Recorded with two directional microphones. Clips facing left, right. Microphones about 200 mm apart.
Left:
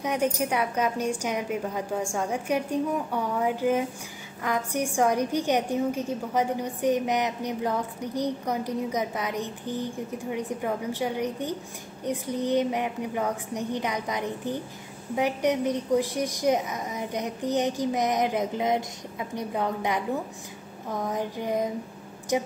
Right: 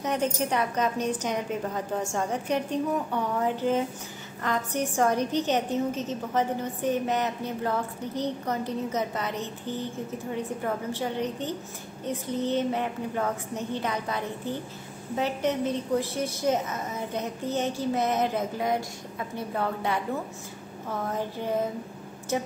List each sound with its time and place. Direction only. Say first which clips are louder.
0.0 s a woman's voice: left 1 dB; 10° left (ahead or behind)